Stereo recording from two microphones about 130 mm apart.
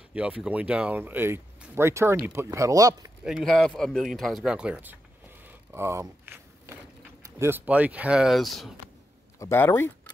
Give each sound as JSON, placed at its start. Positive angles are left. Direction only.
{"t": 0.1, "sound": "speech", "side_deg": -10}
{"t": 3.3, "sound": "speech", "side_deg": 0}
{"t": 9.4, "sound": "speech", "side_deg": 20}